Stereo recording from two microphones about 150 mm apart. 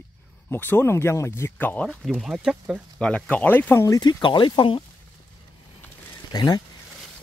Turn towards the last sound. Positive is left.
turn(degrees=25)  # may be behind; listen again after turning